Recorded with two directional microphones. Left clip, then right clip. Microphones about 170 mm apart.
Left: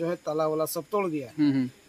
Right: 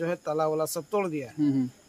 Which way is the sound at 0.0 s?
25° right (ahead or behind).